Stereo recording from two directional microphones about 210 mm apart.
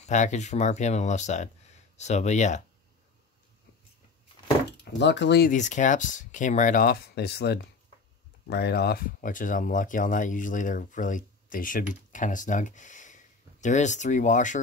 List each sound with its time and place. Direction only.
0.0 s speech: 35° left (ahead or behind)
4.9 s speech: 55° left (ahead or behind)
5.5 s speech: 35° left (ahead or behind)